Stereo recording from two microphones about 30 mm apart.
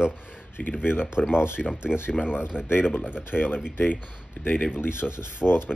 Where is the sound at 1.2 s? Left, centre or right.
Left.